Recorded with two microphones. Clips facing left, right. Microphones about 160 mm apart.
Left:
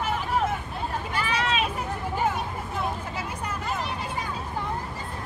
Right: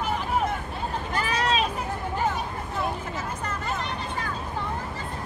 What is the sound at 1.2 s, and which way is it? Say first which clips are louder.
Hubbub: right 2 dB; 40° right (ahead or behind).